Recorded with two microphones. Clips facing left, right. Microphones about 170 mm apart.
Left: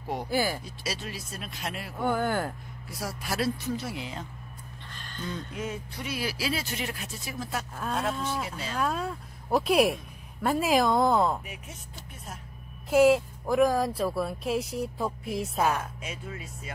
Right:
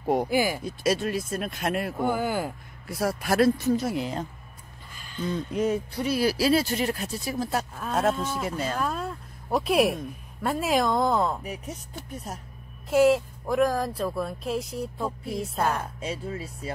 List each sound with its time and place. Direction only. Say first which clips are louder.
0.0 s speech: right 9 dB; 50° right (ahead or behind)
0.3 s speech: right 3 dB; 15° right (ahead or behind)
0.7 s speech: right 11 dB; 50° right (ahead or behind)
2.0 s speech: left 2 dB; 10° right (ahead or behind)
2.9 s speech: right 9 dB; 55° right (ahead or behind)
4.9 s a sound: right 4 dB; 10° right (ahead or behind)
5.5 s speech: right 10 dB; 40° right (ahead or behind)
8.2 s speech: right 2 dB; 5° right (ahead or behind)
8.5 s speech: right 8 dB; 50° right (ahead or behind)
8.7 s speech: even; centre (ahead or behind)
11.4 s speech: right 8 dB; 40° right (ahead or behind)
12.9 s speech: even; centre (ahead or behind)
15.8 s speech: right 6 dB; 35° right (ahead or behind)